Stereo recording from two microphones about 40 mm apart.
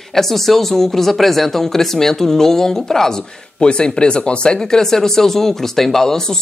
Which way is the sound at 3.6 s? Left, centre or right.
Left.